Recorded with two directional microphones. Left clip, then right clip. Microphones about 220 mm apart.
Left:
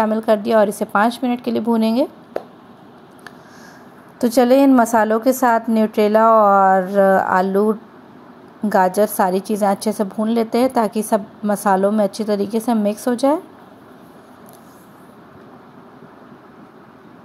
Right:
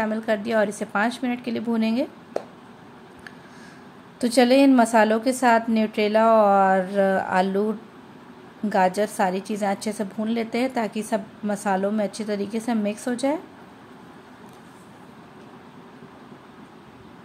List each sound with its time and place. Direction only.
0.0 s a woman's voice: 20° left (ahead or behind)
4.2 s a woman's voice: 15° left (ahead or behind)
8.7 s a woman's voice: 20° left (ahead or behind)